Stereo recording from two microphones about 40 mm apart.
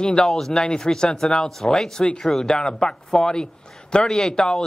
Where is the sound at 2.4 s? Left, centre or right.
Centre.